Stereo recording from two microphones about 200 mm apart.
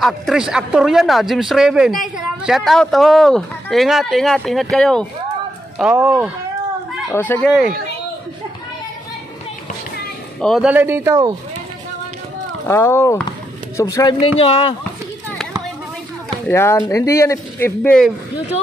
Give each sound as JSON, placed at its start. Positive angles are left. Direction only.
{"t": 0.0, "sound": "speech", "side_deg": 0}
{"t": 5.8, "sound": "speech", "side_deg": -5}
{"t": 7.1, "sound": "speech", "side_deg": 10}
{"t": 7.4, "sound": "speech", "side_deg": -5}
{"t": 10.4, "sound": "speech", "side_deg": 0}
{"t": 10.7, "sound": "speech", "side_deg": -10}
{"t": 12.6, "sound": "speech", "side_deg": 15}
{"t": 14.4, "sound": "speech", "side_deg": 25}
{"t": 16.4, "sound": "speech", "side_deg": 10}